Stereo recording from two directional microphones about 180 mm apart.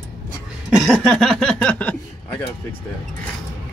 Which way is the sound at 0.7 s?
Centre (ahead or behind).